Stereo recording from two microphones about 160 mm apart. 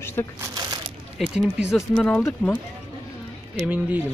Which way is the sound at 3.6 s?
10° right (ahead or behind).